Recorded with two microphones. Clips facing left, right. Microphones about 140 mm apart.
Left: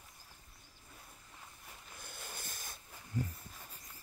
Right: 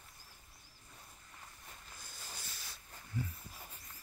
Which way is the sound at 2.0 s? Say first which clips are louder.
Left 5 dB; 55° left (ahead or behind).